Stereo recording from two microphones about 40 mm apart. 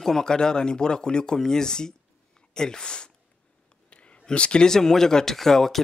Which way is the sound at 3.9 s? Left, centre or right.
Left.